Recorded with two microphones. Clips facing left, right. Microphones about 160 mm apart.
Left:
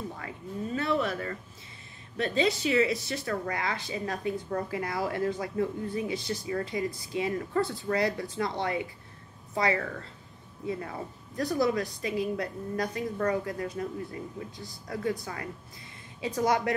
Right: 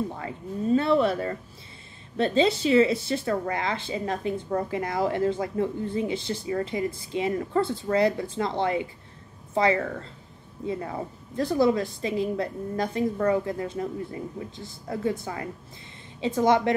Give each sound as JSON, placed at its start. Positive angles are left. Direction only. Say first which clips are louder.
{"t": 0.7, "sound": "speech", "louder": "right 7 dB", "side_deg": -30}